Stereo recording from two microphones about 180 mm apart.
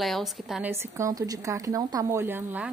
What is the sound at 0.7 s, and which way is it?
Speech, 15° right (ahead or behind).